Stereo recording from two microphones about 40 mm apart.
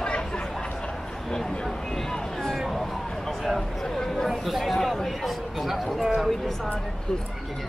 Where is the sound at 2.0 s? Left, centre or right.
Centre.